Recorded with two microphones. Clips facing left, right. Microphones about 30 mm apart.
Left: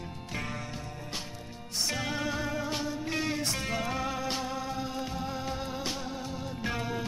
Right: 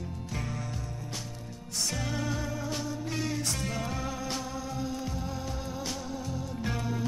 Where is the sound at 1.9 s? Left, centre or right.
Left.